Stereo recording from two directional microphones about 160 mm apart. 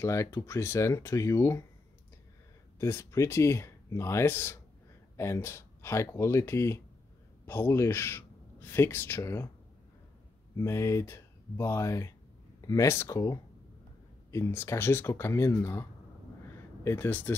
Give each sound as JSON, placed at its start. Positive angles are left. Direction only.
{"t": 0.0, "sound": "speech", "side_deg": 15}
{"t": 2.8, "sound": "speech", "side_deg": 15}
{"t": 10.5, "sound": "speech", "side_deg": 15}
{"t": 16.8, "sound": "speech", "side_deg": 15}